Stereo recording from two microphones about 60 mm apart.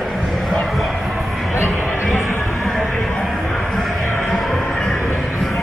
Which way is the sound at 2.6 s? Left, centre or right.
Centre.